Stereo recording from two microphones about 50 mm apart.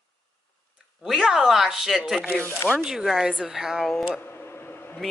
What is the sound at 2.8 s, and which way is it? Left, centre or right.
Speech, centre.